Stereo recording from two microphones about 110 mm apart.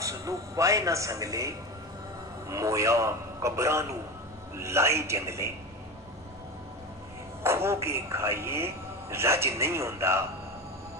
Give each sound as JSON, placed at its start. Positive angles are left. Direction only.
{"t": 0.0, "sound": "a man's voice", "side_deg": -30}
{"t": 2.5, "sound": "a man's voice", "side_deg": -30}
{"t": 7.4, "sound": "a man's voice", "side_deg": -25}